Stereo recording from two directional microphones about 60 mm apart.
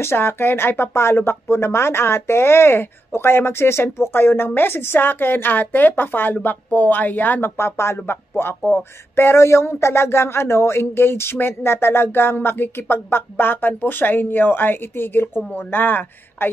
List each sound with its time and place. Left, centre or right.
0.0 s speech: left
7.5 s speech: left